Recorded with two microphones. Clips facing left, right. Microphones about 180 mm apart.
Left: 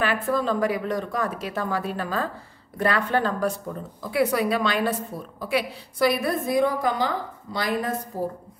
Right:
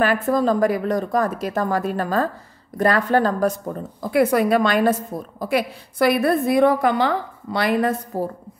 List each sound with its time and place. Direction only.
0.0 s a woman's voice: 40° right (ahead or behind); by 8.3 s 70° right (ahead or behind)